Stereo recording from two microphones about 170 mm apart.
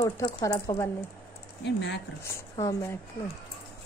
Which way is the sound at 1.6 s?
90° left.